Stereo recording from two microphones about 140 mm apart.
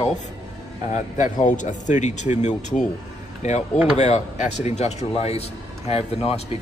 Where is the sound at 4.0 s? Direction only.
55° left (ahead or behind).